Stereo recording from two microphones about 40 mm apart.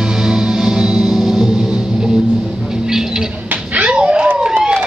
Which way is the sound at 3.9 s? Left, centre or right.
Right.